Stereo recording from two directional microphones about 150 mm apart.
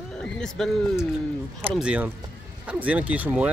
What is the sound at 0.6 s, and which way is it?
Speech, 5° left (ahead or behind).